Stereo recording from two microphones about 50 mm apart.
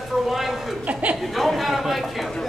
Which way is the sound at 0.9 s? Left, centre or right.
Right.